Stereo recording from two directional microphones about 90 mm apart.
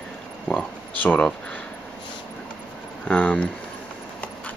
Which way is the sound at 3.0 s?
15° left (ahead or behind).